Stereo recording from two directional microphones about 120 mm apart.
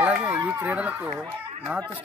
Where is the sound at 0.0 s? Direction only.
10° right (ahead or behind).